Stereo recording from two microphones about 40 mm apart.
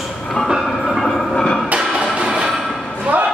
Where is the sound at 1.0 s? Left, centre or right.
Centre.